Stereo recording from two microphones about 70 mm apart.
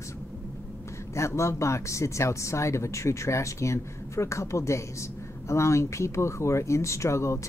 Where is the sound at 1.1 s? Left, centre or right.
Left.